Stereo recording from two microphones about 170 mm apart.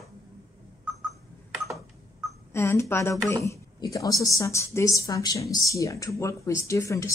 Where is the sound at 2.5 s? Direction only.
15° left (ahead or behind).